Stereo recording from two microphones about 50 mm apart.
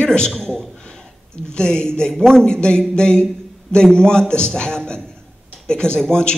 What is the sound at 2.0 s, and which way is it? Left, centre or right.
Speech, centre.